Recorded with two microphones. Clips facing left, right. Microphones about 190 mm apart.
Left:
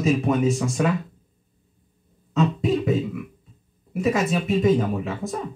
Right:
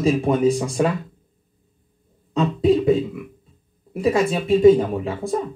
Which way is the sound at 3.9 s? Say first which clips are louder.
Right 3 dB; 30° right (ahead or behind).